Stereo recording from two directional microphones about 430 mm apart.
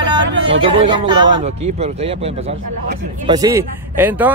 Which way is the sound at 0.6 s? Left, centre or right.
Centre.